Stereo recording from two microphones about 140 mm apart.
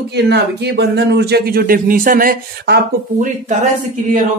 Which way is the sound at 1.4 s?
90° right.